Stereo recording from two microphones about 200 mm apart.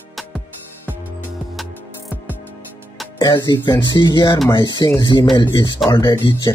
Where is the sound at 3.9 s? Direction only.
20° left (ahead or behind).